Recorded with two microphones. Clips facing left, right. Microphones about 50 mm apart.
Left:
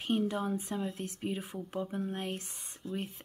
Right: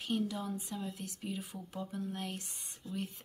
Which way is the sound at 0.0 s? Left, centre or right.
Left.